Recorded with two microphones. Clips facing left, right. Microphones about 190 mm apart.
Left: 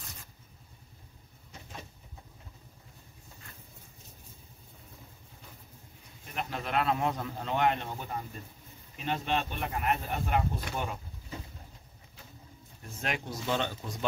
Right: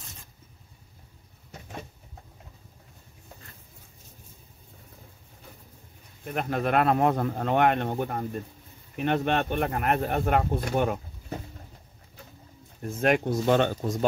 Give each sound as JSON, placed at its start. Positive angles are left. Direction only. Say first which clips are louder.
{"t": 6.2, "sound": "speech", "louder": "right 9 dB", "side_deg": -55}
{"t": 13.0, "sound": "speech", "louder": "right 12 dB", "side_deg": -55}